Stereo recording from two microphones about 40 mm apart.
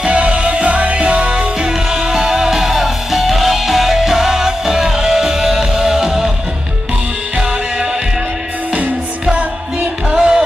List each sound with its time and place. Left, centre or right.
0.0 s music: right; by 6.3 s centre
10.1 s music: centre